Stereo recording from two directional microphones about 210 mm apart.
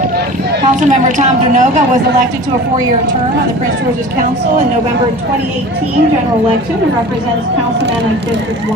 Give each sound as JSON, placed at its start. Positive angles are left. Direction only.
{"t": 0.8, "sound": "a woman's voice", "side_deg": -35}